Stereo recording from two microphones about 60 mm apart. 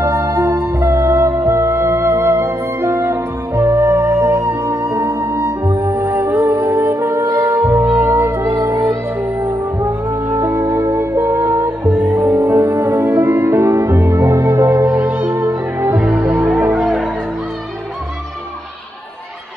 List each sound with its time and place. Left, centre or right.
0.0 s music: right
3.5 s music: right
11.8 s music: right
14.9 s music: right
15.3 s music: right
16.0 s music: right